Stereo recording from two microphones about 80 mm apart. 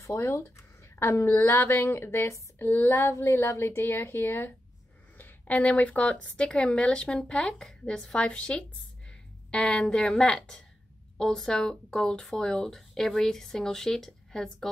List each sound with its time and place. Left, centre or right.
0.1 s a woman's voice: left; by 14.7 s centre